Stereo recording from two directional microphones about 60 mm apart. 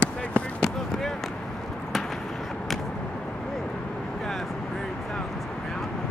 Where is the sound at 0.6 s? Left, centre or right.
Centre.